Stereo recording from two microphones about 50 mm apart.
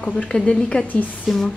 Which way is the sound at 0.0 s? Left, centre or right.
Left.